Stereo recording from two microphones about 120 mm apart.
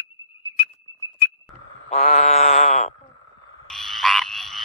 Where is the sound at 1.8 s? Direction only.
85° left; by 2.9 s 65° left (ahead or behind).